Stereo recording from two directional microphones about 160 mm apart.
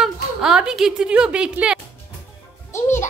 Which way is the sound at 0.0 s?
5° right (ahead or behind).